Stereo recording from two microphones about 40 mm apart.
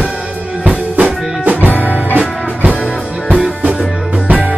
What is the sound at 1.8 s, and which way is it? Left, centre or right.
Music, right.